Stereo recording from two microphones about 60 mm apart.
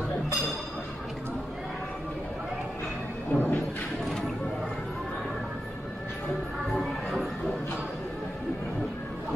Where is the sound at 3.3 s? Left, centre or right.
Left.